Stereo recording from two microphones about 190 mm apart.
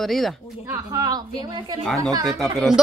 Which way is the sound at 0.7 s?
20° right (ahead or behind).